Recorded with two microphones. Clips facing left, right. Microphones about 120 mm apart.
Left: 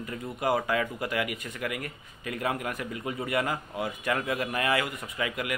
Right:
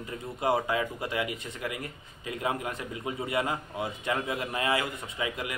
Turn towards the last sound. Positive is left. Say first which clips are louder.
# left 2 dB
turn(degrees=-25)  # may be behind; listen again after turning